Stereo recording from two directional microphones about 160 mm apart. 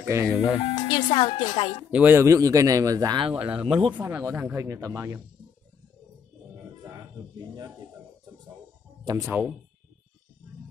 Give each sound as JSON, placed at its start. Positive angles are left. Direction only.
{"t": 0.1, "sound": "speech", "side_deg": -15}
{"t": 0.6, "sound": "speech", "side_deg": 30}
{"t": 1.9, "sound": "speech", "side_deg": -10}
{"t": 3.3, "sound": "speech", "side_deg": -5}
{"t": 6.8, "sound": "a sound", "side_deg": -20}
{"t": 9.0, "sound": "speech", "side_deg": -15}